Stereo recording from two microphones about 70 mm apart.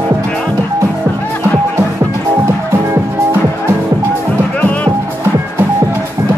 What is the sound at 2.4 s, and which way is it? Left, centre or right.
Music, right.